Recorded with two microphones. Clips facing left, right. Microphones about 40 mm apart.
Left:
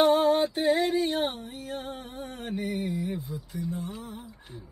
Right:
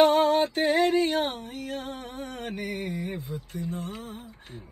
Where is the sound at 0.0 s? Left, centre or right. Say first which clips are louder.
Right 1 dB; right.